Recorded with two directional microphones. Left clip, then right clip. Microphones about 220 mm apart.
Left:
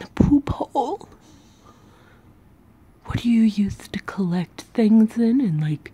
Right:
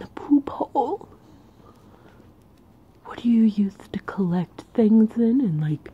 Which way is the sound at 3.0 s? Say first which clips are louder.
Left 1 dB; 20° left (ahead or behind).